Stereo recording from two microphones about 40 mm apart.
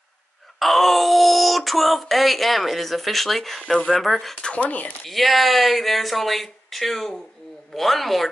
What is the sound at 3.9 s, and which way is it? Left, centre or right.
Speech, centre.